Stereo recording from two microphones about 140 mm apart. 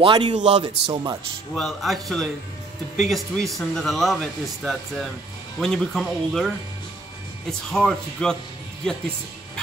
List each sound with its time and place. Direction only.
0.0 s speech: 35° right (ahead or behind)
0.4 s a man's voice: 50° right (ahead or behind)
1.5 s speech: centre (ahead or behind)